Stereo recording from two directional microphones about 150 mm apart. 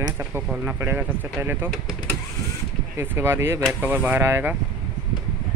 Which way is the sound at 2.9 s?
15° right (ahead or behind).